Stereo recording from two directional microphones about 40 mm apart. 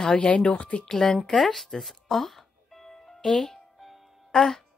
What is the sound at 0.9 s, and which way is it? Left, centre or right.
Speech, centre.